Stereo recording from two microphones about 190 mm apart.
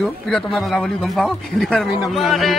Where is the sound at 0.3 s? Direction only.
Centre (ahead or behind).